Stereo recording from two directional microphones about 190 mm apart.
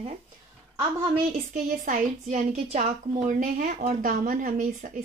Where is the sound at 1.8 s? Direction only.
40° right (ahead or behind).